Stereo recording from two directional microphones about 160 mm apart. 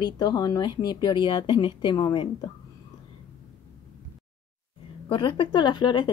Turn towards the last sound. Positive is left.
turn(degrees=30)  # may be behind; listen again after turning